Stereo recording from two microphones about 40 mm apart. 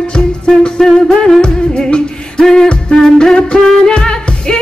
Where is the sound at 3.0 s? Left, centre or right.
Centre.